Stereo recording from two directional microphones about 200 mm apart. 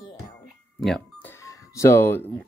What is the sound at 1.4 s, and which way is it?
Music, 15° left (ahead or behind).